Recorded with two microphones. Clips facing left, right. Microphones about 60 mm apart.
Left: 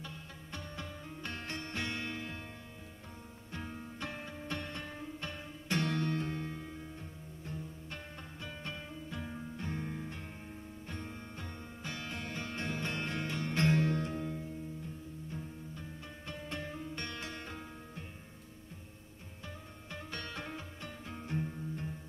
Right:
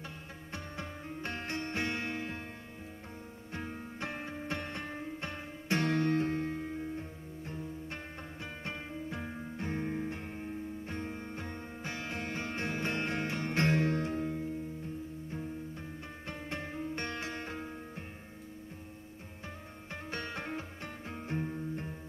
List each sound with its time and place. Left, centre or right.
0.0 s music: right
3.5 s music: right
16.3 s music: right
19.9 s music: right